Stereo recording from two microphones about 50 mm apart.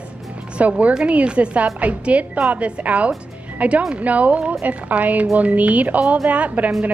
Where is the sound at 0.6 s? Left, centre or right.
Right.